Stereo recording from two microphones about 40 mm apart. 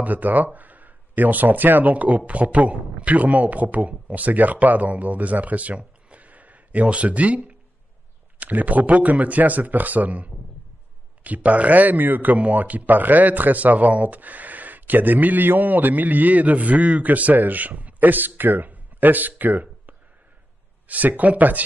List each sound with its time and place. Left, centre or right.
0.0 s a man's voice: right
12.4 s a man's voice: right